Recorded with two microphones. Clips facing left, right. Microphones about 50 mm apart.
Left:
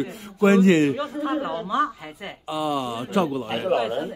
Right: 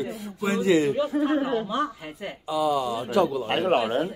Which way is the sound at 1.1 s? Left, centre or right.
Right.